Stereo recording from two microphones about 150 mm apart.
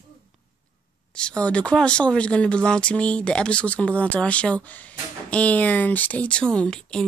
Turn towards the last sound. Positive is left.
turn(degrees=5)  # may be behind; listen again after turning